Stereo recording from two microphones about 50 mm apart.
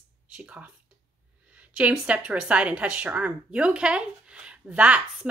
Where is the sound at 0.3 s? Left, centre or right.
Right.